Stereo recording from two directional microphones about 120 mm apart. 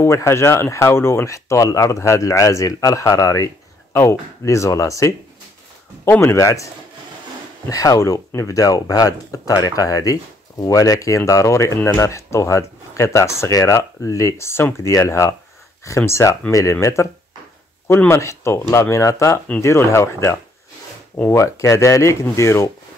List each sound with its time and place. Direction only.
0.0 s speech: 25° left (ahead or behind)
7.7 s speech: 30° left (ahead or behind)